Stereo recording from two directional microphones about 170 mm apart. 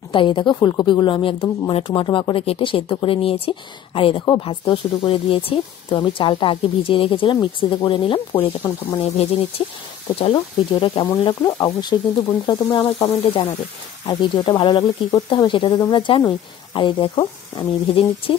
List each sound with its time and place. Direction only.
0.1 s speech: 30° left (ahead or behind)